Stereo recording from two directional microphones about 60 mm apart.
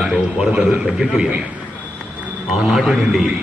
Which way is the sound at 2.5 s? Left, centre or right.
Centre.